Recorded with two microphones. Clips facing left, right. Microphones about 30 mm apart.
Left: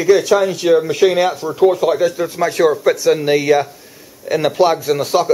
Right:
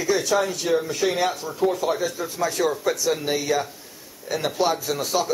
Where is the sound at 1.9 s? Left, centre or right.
Left.